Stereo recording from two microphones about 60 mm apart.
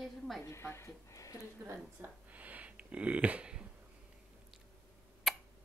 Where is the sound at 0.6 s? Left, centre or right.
Left.